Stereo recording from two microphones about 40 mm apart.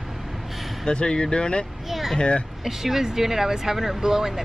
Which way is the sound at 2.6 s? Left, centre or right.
Centre.